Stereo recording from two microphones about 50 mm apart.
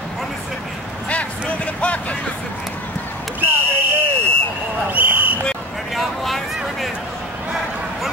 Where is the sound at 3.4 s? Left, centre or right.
Right.